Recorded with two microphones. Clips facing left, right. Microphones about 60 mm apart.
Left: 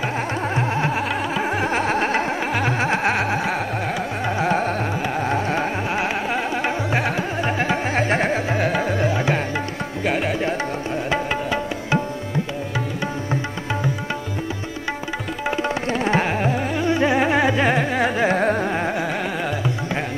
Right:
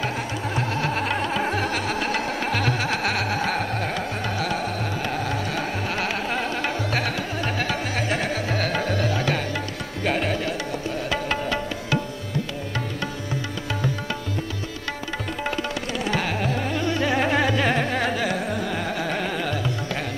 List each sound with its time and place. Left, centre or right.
0.6 s a sound: left
0.9 s a sound: centre
1.8 s carnatic music: left
2.4 s carnatic music: centre
4.4 s carnatic music: left
6.3 s carnatic music: centre; by 8.4 s left
8.5 s music: centre
10.0 s tabla: centre
11.1 s music: centre
15.6 s music: left; by 18.1 s centre
18.1 s carnatic music: left
19.0 s carnatic music: centre